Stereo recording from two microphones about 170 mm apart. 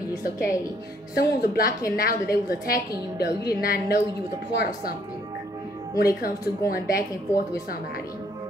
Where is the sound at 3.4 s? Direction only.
65° left (ahead or behind).